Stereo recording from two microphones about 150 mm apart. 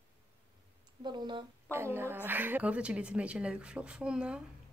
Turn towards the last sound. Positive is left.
turn(degrees=-5)  # may be behind; listen again after turning